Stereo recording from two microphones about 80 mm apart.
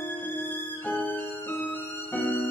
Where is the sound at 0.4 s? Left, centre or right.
Left.